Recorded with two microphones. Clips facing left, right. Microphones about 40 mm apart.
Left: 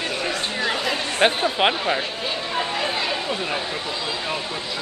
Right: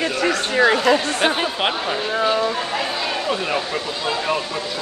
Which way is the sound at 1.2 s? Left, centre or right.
Centre.